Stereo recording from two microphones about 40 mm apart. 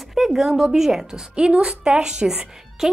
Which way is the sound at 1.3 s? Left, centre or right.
Right.